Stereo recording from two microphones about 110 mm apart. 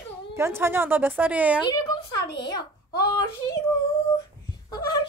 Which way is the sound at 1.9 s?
40° left (ahead or behind).